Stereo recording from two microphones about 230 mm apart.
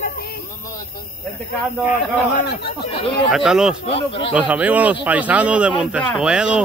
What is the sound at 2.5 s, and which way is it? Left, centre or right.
Speech, left.